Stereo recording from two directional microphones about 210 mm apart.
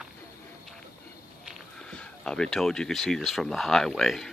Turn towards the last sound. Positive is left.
turn(degrees=0)  # may be behind; listen again after turning